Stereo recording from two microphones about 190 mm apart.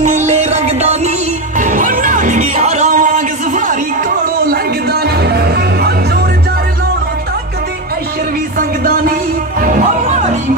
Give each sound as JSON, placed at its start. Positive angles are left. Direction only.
{"t": 0.3, "sound": "music", "side_deg": -35}
{"t": 5.0, "sound": "music", "side_deg": -60}
{"t": 8.5, "sound": "music", "side_deg": -50}